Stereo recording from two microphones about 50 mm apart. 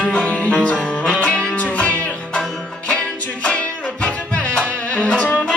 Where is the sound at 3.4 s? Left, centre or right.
Left.